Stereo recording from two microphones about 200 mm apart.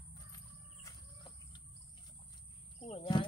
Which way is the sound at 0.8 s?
20° left (ahead or behind).